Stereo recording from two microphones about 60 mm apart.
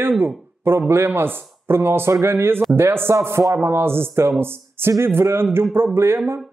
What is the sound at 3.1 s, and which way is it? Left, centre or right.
Speech, right.